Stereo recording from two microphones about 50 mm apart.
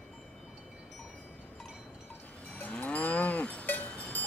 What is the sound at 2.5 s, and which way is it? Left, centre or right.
Cattle, left.